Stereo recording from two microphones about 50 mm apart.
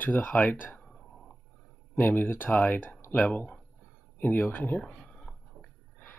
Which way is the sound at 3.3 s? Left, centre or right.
Left.